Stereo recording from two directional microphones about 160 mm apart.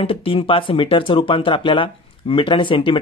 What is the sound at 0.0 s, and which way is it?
Speech, 35° left (ahead or behind).